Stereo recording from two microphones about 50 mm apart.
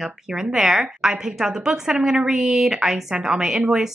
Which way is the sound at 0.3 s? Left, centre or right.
Centre.